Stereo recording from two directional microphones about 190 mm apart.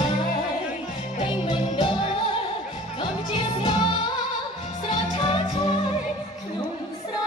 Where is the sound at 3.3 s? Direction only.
25° left (ahead or behind).